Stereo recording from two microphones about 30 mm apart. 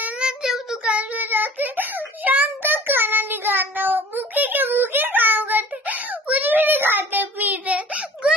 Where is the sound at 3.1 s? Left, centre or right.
Right.